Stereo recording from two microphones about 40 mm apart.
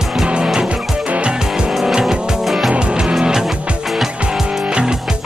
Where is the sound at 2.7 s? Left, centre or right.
Right.